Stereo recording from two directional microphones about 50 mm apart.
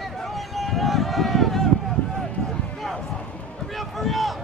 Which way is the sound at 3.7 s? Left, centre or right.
Centre.